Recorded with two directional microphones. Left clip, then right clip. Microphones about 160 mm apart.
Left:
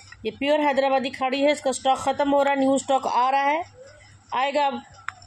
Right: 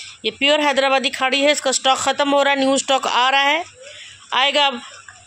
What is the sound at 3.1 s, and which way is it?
Speech, 90° right.